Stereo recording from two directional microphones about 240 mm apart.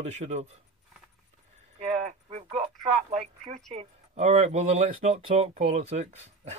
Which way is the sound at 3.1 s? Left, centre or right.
Right.